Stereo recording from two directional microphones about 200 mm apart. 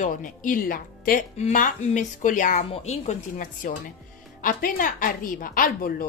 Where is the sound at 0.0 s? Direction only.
40° left (ahead or behind).